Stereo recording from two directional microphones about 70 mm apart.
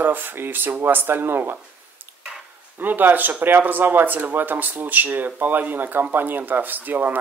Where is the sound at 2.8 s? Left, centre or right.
Right.